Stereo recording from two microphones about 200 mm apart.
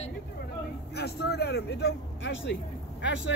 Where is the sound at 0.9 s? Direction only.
55° left (ahead or behind).